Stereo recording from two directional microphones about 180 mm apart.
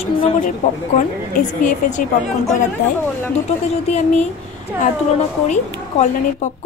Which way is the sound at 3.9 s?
40° left (ahead or behind).